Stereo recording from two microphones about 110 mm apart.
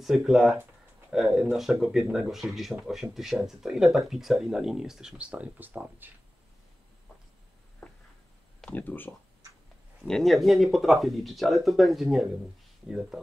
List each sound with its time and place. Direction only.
0.0 s speech: 5° right (ahead or behind)
8.6 s speech: 15° left (ahead or behind)
10.0 s speech: 5° left (ahead or behind)